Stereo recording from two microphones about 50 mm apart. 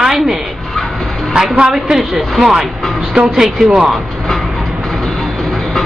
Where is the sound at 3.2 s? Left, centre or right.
Right.